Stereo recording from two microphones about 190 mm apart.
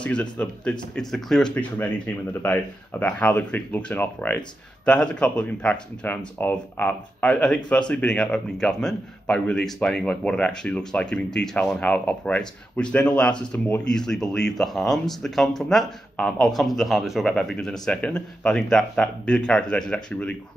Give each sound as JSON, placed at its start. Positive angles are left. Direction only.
{"t": 0.0, "sound": "a man's voice", "side_deg": 5}